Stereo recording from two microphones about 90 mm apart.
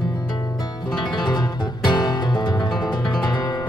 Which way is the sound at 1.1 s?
55° left (ahead or behind).